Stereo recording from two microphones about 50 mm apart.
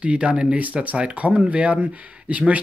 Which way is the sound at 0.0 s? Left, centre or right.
Right.